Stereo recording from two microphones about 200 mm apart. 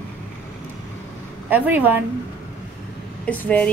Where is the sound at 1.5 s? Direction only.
10° right (ahead or behind).